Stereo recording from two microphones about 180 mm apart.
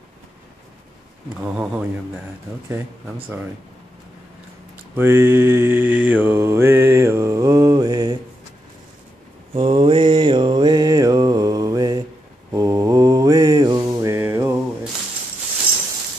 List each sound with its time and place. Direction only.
1.4 s mantra: 10° right (ahead or behind)
4.9 s mantra: 10° right (ahead or behind)
9.5 s mantra: 30° right (ahead or behind); by 14.9 s 15° right (ahead or behind)